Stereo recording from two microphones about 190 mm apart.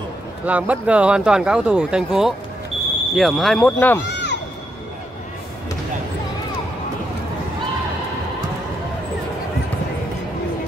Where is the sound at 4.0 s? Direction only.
65° left (ahead or behind).